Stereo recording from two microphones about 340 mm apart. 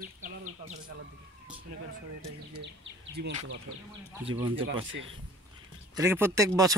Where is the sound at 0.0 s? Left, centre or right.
Right.